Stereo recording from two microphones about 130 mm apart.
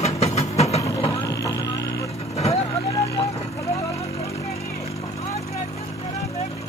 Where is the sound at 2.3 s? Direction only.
50° left (ahead or behind).